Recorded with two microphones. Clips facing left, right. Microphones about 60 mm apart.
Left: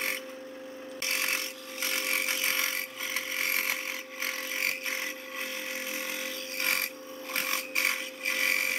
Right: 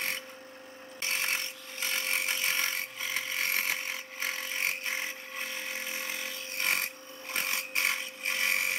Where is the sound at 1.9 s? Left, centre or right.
Centre.